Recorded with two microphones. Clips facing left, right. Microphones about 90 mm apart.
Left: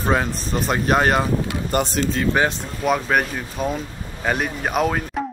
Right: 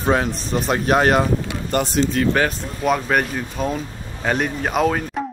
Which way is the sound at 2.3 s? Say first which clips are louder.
Even; 20° left (ahead or behind).